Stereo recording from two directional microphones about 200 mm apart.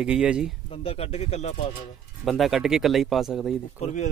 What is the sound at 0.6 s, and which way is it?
Speech, 30° left (ahead or behind).